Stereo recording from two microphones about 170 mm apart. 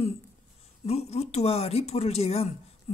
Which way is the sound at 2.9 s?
40° left (ahead or behind).